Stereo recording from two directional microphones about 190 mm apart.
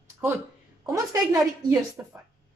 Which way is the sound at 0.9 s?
15° right (ahead or behind).